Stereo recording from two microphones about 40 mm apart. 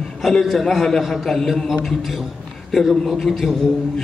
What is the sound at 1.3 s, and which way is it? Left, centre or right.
Speech, centre.